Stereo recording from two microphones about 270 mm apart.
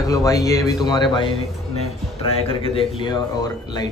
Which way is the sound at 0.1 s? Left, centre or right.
Centre.